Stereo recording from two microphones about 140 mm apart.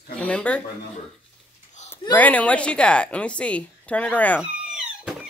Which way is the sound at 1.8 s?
55° left (ahead or behind).